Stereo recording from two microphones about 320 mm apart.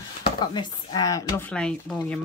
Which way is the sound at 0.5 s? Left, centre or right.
Centre.